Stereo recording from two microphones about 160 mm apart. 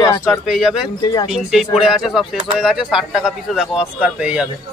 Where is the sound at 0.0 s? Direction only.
20° left (ahead or behind).